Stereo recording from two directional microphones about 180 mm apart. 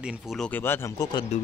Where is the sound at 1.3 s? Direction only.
40° left (ahead or behind).